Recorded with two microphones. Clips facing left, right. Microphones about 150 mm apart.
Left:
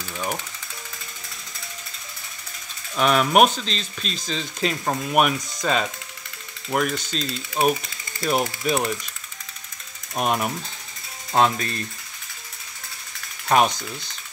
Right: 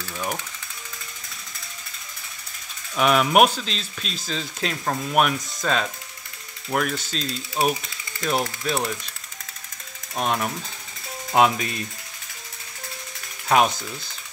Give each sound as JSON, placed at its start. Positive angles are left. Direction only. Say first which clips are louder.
{"t": 3.0, "sound": "speech", "louder": "even", "side_deg": -5}
{"t": 10.1, "sound": "speech", "louder": "left 1 dB", "side_deg": 10}
{"t": 11.3, "sound": "ratchet", "louder": "right 1 dB", "side_deg": -10}
{"t": 13.5, "sound": "speech", "louder": "even", "side_deg": 0}